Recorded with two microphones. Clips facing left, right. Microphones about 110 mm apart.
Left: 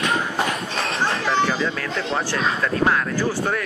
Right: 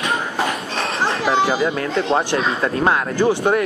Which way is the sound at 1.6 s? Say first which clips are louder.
Right 5 dB; 25° right (ahead or behind).